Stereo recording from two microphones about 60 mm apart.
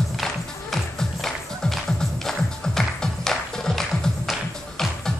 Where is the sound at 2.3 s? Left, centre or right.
Centre.